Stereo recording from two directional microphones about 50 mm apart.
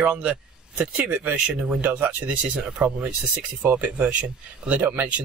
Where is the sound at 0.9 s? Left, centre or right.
Right.